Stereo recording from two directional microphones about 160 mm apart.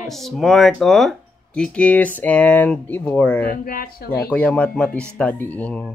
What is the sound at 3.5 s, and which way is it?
Speech, 65° left (ahead or behind).